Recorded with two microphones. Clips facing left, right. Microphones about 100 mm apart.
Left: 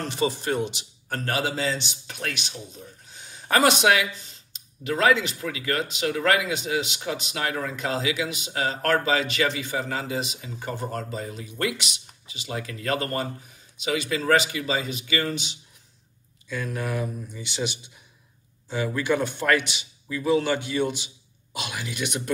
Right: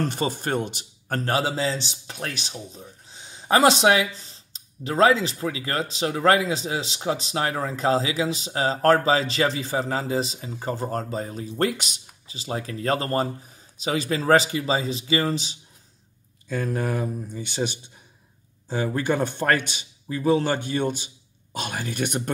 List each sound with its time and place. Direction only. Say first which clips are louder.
0.0 s a man's voice: right 1 dB; 45° right (ahead or behind)
1.2 s a man's voice: right 2 dB; 30° right (ahead or behind)